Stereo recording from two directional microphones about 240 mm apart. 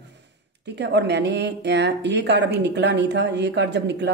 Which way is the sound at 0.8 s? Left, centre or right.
Right.